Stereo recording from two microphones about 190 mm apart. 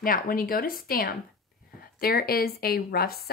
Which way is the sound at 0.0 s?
50° left (ahead or behind).